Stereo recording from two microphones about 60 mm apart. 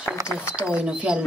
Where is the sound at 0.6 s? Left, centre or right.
Centre.